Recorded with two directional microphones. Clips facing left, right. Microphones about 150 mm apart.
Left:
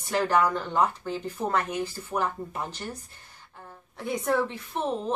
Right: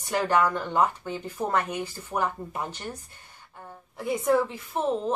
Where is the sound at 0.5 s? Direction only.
10° right (ahead or behind).